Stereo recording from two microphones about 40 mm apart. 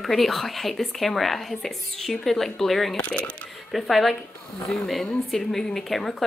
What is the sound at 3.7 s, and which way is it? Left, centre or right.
A woman's voice, centre.